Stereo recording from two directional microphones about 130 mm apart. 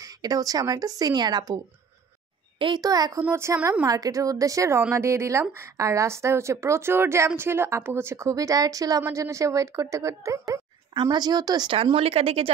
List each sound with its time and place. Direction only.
0.0 s a woman's voice: 25° right (ahead or behind)
2.6 s a woman's voice: 35° right (ahead or behind)
3.2 s a woman's voice: 15° right (ahead or behind); by 12.4 s 50° right (ahead or behind)